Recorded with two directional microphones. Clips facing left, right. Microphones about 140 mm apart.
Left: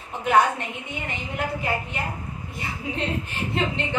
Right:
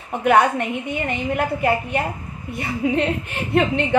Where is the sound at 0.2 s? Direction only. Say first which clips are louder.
Right 4 dB; 60° right (ahead or behind).